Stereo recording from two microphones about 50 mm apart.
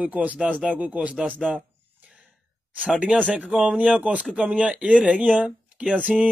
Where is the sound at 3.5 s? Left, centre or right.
Centre.